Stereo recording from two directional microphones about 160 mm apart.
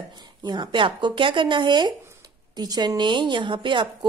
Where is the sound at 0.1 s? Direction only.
25° right (ahead or behind).